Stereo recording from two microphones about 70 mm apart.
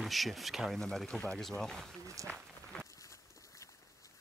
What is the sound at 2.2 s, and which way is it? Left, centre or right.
Speech, right.